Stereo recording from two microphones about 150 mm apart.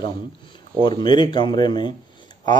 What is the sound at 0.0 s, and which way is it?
Speech, 30° left (ahead or behind).